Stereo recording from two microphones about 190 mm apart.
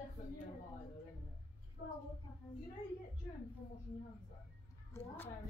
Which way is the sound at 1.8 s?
45° left (ahead or behind).